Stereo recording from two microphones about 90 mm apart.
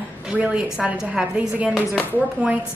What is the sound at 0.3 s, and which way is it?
Speech, 15° right (ahead or behind).